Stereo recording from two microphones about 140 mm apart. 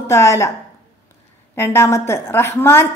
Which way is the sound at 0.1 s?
20° left (ahead or behind).